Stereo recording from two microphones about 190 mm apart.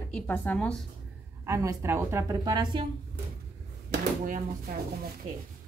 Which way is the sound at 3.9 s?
45° right (ahead or behind).